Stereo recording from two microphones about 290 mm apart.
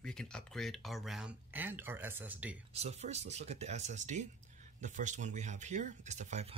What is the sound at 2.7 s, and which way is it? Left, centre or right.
Speech, right.